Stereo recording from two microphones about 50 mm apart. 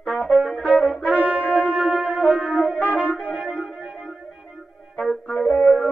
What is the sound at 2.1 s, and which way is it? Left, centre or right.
Music, centre.